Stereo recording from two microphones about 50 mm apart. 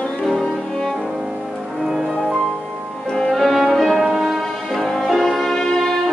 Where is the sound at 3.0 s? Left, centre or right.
Centre.